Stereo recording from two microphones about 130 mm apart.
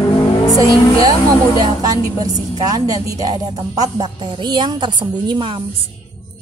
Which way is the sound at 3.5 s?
40° right (ahead or behind).